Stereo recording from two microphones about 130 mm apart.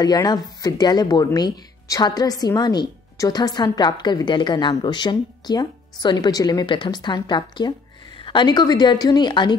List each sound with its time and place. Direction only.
0.0 s speech: 30° left (ahead or behind)